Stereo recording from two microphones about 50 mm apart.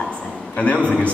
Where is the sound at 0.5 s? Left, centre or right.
Left.